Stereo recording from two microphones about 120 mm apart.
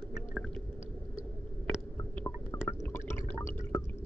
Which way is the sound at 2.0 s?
20° left (ahead or behind).